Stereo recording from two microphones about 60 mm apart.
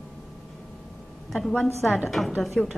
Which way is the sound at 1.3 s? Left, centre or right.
Centre.